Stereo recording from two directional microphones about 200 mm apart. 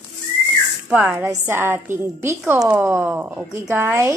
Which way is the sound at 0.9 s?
10° right (ahead or behind).